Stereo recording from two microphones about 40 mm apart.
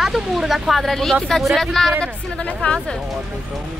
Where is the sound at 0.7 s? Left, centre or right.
Centre.